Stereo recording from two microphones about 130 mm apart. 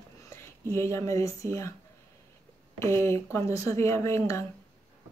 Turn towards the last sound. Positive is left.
turn(degrees=20)  # may be behind; listen again after turning